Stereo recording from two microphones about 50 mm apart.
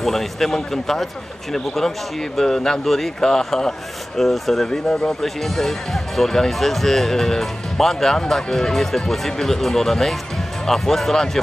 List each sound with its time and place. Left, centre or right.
0.0 s a man's voice: centre
2.3 s a man's voice: centre
4.6 s speech: centre